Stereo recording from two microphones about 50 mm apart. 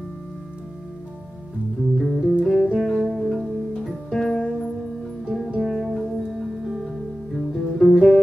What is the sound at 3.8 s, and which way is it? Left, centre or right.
Music, centre.